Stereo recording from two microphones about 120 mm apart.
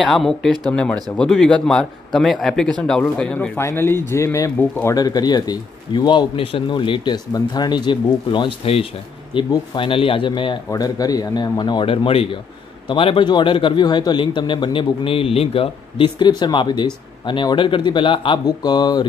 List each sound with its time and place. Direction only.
0.1 s speech: 5° left (ahead or behind); by 4.5 s 25° left (ahead or behind)
4.6 s speech: 15° left (ahead or behind)
4.9 s a man's voice: 35° left (ahead or behind)
10.7 s a man's voice: 30° left (ahead or behind)